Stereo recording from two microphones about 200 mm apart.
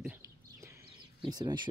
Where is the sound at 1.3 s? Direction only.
20° right (ahead or behind).